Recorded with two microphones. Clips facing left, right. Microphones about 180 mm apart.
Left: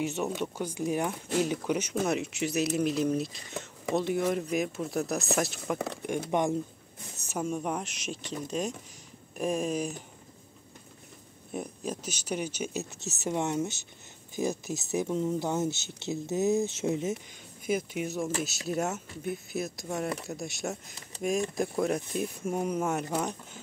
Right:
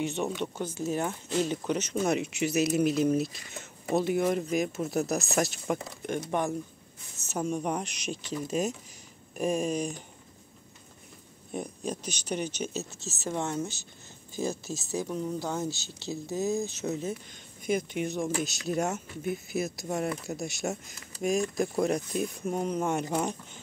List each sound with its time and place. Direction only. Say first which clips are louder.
0.0 s speech: even; 5° left (ahead or behind)
6.0 s speech: left 1 dB; 15° left (ahead or behind)
11.5 s speech: right 1 dB; 5° left (ahead or behind)
17.6 s speech: right 1 dB; 5° left (ahead or behind)